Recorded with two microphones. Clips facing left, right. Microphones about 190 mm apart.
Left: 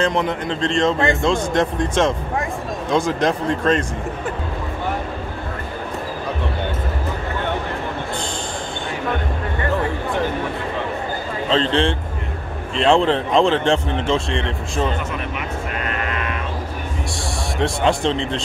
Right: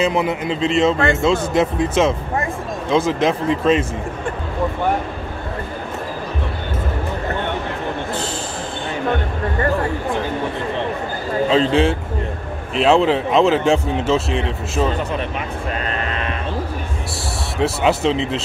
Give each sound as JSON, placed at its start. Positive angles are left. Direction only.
{"t": 0.0, "sound": "a man's voice", "side_deg": -5}
{"t": 11.5, "sound": "a man's voice", "side_deg": -5}
{"t": 15.9, "sound": "sheep", "side_deg": -30}
{"t": 17.6, "sound": "a man's voice", "side_deg": -5}